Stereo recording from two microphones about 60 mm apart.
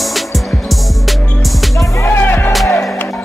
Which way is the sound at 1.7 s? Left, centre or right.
Left.